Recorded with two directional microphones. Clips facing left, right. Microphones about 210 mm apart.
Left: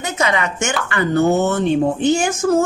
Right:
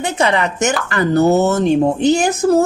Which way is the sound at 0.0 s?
30° right (ahead or behind).